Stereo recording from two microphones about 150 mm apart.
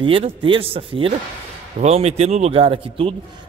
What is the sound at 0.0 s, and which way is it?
A man's voice, 35° right (ahead or behind).